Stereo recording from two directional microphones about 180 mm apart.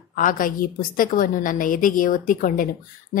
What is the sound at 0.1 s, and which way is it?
Speech, 50° left (ahead or behind).